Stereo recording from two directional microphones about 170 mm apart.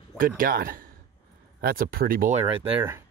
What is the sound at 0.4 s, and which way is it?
Speech, 60° right (ahead or behind).